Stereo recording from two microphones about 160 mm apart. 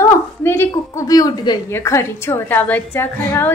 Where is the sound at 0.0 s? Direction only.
15° left (ahead or behind).